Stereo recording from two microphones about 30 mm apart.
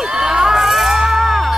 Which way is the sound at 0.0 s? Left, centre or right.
Right.